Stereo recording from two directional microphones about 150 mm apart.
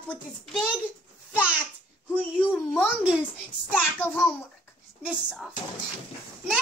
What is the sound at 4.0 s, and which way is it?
Speech, 10° left (ahead or behind).